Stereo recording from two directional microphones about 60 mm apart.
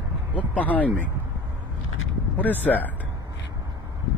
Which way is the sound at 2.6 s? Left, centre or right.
Left.